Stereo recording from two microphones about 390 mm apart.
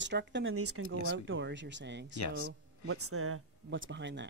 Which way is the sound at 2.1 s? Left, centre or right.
Left.